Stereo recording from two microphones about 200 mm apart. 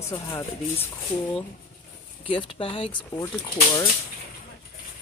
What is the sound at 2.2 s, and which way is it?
Speech, 25° left (ahead or behind).